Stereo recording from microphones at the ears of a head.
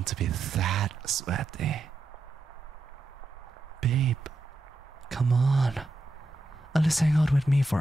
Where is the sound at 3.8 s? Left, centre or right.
Right.